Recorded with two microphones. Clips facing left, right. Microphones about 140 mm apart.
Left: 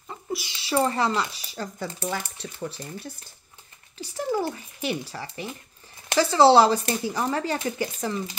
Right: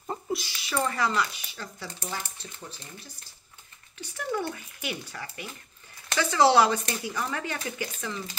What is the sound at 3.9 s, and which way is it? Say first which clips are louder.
Speech: left 5 dB; 30° left (ahead or behind).